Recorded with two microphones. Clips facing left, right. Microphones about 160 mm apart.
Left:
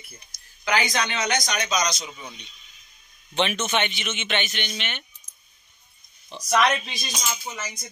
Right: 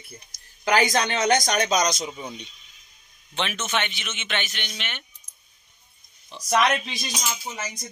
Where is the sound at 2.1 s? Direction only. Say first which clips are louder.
Right 5 dB; 35° right (ahead or behind).